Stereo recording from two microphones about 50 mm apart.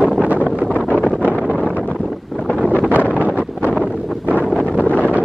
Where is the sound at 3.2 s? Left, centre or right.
Left.